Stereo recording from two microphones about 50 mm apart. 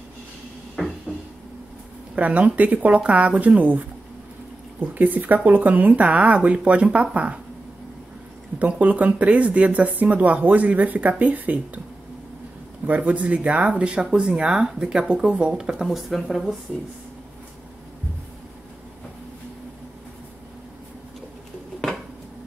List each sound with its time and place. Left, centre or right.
0.8 s cupboard open or close: centre
2.1 s speech: right
8.5 s speech: right
12.8 s speech: right; by 16.4 s centre